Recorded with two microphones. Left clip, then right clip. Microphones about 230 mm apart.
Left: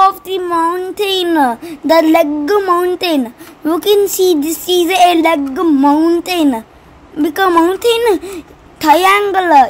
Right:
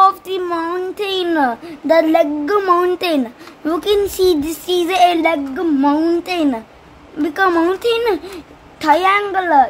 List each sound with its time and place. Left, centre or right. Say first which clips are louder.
0.0 s a child's voice: left 2 dB; centre